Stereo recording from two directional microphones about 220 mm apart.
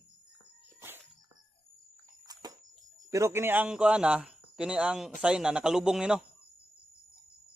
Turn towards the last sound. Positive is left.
turn(degrees=-5)  # may be behind; listen again after turning